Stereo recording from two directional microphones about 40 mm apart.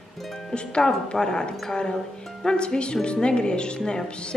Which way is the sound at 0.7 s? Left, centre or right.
Left.